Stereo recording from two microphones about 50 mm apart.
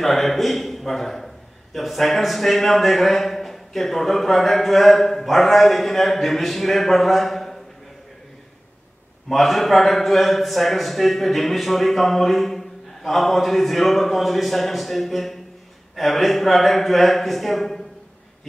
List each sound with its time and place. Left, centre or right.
0.0 s a man's voice: centre
9.3 s a man's voice: centre